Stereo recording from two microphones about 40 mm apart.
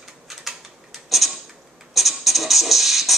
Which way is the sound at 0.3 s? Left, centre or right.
Centre.